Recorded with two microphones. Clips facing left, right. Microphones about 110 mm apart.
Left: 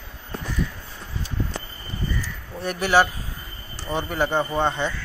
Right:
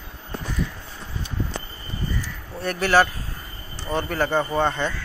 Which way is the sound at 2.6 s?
15° left (ahead or behind).